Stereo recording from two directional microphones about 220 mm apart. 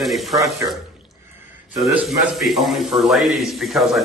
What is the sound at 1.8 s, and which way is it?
A man's voice, centre (ahead or behind).